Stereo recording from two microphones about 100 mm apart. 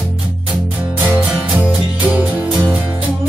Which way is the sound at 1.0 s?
15° right (ahead or behind).